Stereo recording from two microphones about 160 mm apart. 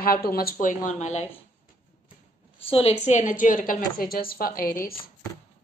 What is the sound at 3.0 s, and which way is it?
A woman's voice, 50° left (ahead or behind).